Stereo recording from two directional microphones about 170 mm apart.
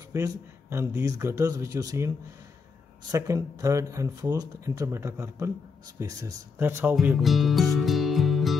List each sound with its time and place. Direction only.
0.1 s speech: 20° right (ahead or behind); by 7.7 s centre (ahead or behind)
7.8 s music: centre (ahead or behind)